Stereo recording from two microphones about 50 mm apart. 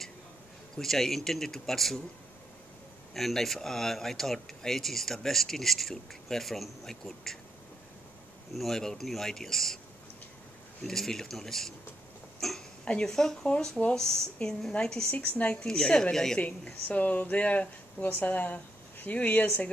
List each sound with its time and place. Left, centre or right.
0.7 s speech: centre
3.2 s speech: centre
8.5 s speech: centre
10.8 s speech: centre
12.4 s a sound: centre
12.8 s speech: left
13.1 s speech: centre
15.0 s speech: left
15.6 s speech: centre
16.8 s speech: left